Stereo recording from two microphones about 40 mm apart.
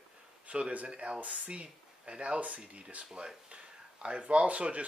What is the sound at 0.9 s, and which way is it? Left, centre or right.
Speech, right.